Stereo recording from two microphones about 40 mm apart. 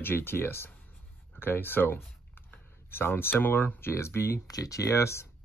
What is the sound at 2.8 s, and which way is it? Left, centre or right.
Speech, left.